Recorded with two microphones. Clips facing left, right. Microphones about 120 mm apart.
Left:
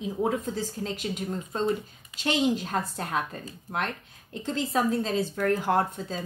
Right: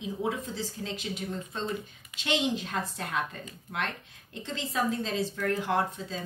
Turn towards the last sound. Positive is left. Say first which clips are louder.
# left 3 dB
turn(degrees=45)  # may be behind; listen again after turning